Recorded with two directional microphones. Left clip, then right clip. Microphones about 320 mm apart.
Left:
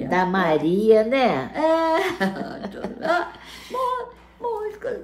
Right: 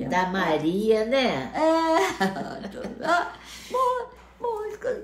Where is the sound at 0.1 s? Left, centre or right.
Centre.